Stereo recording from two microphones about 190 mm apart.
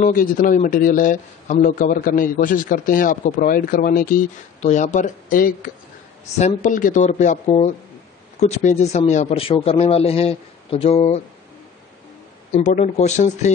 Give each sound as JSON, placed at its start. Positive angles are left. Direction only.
{"t": 0.0, "sound": "speech", "side_deg": 45}
{"t": 12.5, "sound": "speech", "side_deg": 40}